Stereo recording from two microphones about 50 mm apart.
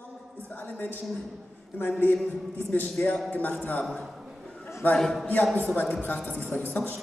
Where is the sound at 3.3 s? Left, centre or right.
Left.